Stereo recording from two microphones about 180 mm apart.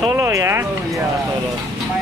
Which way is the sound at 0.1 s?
15° right (ahead or behind).